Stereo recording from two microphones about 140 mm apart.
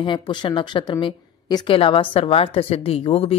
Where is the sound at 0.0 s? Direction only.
35° left (ahead or behind).